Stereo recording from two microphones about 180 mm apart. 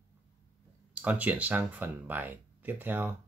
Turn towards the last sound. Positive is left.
turn(degrees=-10)  # may be behind; listen again after turning